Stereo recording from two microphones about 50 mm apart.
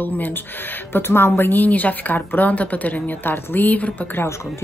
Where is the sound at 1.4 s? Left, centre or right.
Left.